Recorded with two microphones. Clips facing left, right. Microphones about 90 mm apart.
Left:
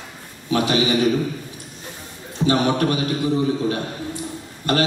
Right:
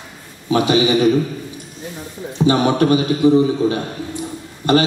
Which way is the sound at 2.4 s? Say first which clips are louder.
Right 4 dB; 20° right (ahead or behind).